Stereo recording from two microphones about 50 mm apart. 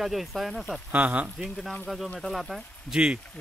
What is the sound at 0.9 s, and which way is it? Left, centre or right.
Speech, right.